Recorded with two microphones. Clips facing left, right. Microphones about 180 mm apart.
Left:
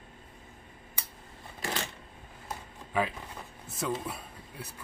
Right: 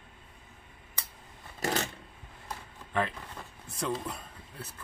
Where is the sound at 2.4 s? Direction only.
5° left (ahead or behind).